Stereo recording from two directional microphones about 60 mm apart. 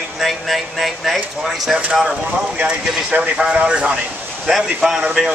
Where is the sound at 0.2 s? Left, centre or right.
Centre.